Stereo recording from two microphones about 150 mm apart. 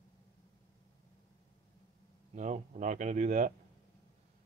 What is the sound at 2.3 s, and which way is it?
A man's voice, 50° right (ahead or behind).